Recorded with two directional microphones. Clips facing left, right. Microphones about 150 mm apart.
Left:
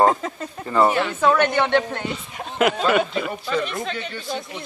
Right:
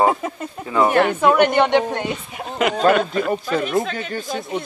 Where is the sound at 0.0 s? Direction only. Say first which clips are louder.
Even; 10° right (ahead or behind).